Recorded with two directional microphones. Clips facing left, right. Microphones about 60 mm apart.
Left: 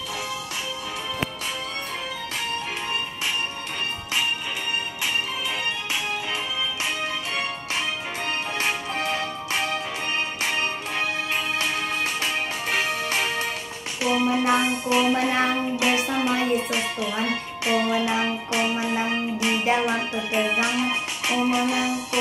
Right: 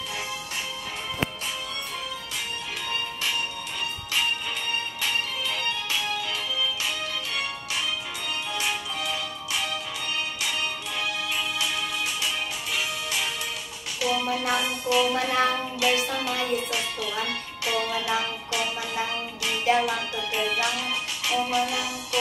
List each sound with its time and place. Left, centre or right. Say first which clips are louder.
7.3 s music: left 3 dB; left
14.0 s music: left 5 dB; left